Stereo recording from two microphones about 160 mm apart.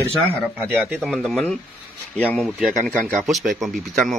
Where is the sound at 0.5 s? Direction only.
10° right (ahead or behind).